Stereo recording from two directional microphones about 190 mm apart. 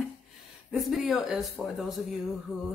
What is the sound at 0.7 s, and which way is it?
Speech, centre (ahead or behind).